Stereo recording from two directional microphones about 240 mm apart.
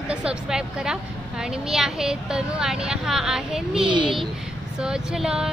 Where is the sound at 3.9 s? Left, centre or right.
Centre.